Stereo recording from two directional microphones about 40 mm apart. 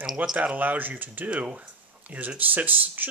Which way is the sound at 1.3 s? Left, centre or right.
Right.